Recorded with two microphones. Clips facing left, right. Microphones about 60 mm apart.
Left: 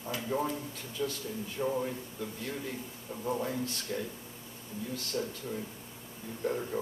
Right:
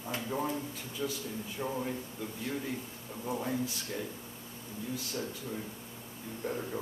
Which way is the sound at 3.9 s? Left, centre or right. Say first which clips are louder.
Left 2 dB; centre.